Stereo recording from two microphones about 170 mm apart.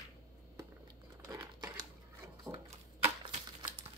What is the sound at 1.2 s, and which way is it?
Crumpling, 20° right (ahead or behind).